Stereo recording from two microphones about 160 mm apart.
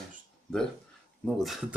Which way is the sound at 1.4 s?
Centre (ahead or behind).